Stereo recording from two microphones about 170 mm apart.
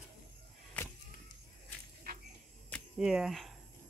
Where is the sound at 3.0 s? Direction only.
5° right (ahead or behind).